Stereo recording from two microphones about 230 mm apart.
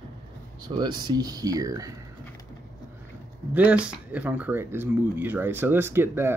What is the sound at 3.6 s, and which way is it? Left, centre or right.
Speech, centre.